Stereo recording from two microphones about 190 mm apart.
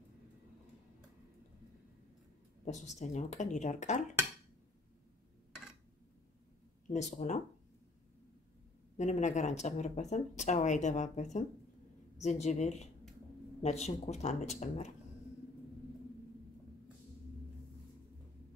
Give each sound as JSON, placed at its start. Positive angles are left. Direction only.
{"t": 2.6, "sound": "speech", "side_deg": 35}
{"t": 6.9, "sound": "speech", "side_deg": 40}
{"t": 8.9, "sound": "speech", "side_deg": 35}